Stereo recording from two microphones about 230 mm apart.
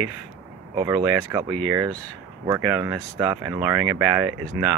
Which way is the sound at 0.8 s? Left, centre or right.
Centre.